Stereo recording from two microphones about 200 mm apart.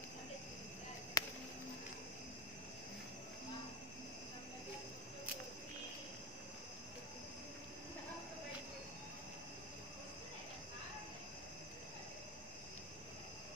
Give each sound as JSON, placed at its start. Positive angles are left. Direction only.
{"t": 1.2, "sound": "chop", "side_deg": 15}